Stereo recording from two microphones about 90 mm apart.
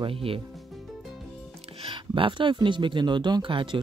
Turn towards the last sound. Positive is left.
turn(degrees=-70)  # may be behind; listen again after turning